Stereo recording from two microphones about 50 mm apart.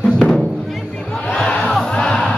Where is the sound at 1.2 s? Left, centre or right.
Centre.